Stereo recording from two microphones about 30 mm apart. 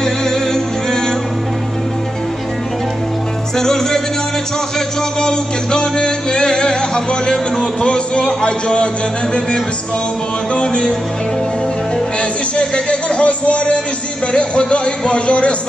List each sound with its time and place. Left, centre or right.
0.0 s music: centre
3.5 s music: centre; by 8.8 s left
10.5 s speech: left
12.2 s music: left
14.3 s speech: left